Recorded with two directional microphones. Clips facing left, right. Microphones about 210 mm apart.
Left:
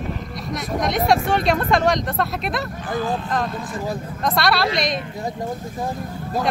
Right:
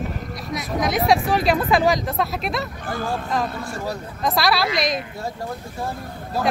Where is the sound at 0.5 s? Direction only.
Centre (ahead or behind).